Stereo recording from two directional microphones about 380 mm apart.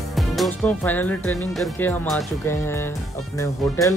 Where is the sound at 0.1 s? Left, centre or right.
Centre.